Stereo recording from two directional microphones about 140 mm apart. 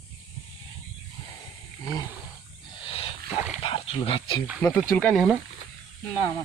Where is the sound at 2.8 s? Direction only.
40° left (ahead or behind).